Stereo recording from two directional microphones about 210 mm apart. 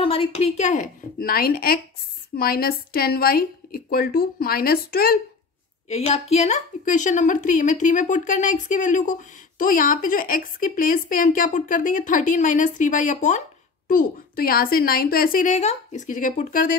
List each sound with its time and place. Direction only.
0.0 s a woman's voice: 25° left (ahead or behind); by 5.2 s 45° left (ahead or behind)
5.9 s a woman's voice: 30° left (ahead or behind)